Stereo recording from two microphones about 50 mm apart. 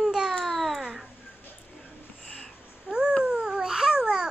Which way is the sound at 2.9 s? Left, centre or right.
Centre.